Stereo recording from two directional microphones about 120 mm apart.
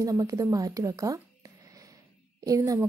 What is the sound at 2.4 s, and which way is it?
Speech, 30° right (ahead or behind).